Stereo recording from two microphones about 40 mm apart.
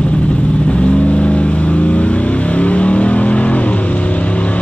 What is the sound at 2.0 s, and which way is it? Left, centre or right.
Vehicle, left.